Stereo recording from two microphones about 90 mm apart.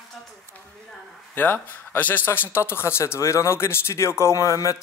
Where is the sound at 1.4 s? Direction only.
20° left (ahead or behind); by 4.8 s 40° left (ahead or behind).